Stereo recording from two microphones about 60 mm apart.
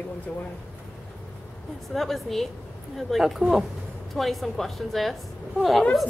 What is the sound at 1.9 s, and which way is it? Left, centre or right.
A woman's voice, centre.